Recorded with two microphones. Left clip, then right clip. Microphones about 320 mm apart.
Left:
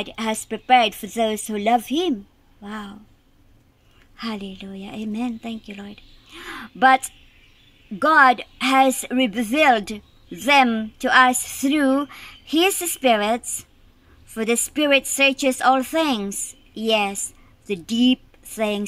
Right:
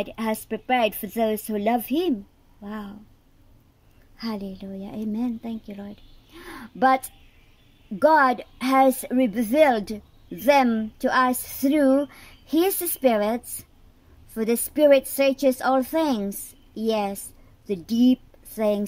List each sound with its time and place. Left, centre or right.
0.0 s speech: centre
4.2 s a woman's voice: centre